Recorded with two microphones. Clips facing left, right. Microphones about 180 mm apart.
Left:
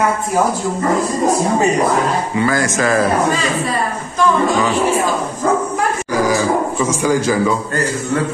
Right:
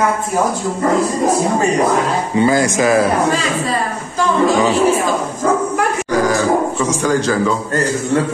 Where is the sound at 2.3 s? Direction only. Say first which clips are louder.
Right 5 dB; 20° right (ahead or behind).